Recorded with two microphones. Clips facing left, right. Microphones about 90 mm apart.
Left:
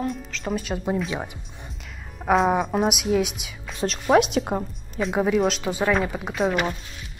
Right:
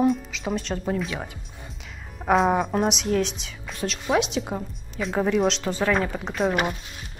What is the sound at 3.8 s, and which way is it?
Speech, 45° left (ahead or behind).